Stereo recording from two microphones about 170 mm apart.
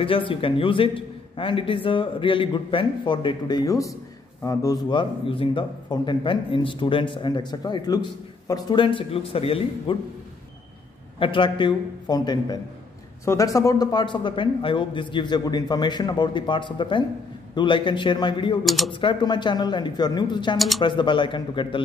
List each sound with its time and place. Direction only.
0.0 s a man's voice: 30° left (ahead or behind)
11.1 s a man's voice: 30° left (ahead or behind)
18.6 s speech: centre (ahead or behind)
18.9 s a man's voice: 30° left (ahead or behind)
20.5 s speech: centre (ahead or behind)
20.8 s a man's voice: 30° left (ahead or behind)